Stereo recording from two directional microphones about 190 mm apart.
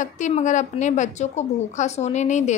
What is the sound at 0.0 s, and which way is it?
Speech, 40° left (ahead or behind).